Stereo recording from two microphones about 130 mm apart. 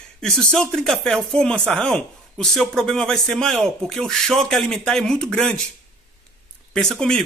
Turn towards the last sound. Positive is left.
turn(degrees=5)  # may be behind; listen again after turning